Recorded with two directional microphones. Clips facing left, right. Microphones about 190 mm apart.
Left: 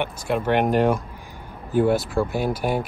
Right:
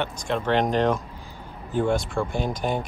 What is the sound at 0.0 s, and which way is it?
Speech, 10° left (ahead or behind).